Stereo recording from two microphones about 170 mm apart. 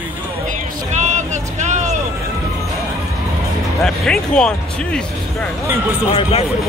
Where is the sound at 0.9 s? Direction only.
45° right (ahead or behind).